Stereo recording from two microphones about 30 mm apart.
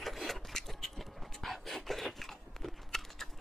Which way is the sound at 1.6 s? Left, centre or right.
Centre.